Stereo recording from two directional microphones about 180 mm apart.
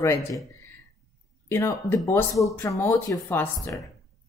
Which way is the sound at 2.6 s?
15° left (ahead or behind).